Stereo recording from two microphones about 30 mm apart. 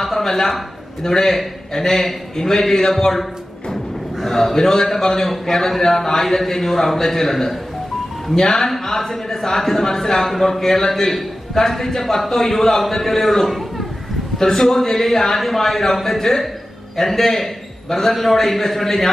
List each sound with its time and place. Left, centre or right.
0.0 s speech: centre